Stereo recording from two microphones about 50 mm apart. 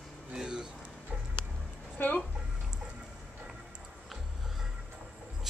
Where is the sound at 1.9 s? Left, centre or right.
Left.